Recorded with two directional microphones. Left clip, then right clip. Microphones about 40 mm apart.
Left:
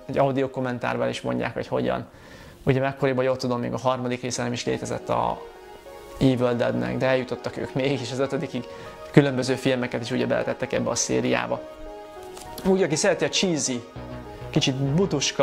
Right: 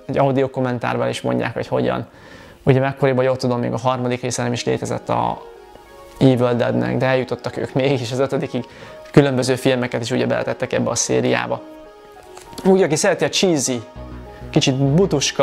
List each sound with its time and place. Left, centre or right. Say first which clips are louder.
0.1 s speech: right 5 dB; right
9.1 s speech: right 5 dB; right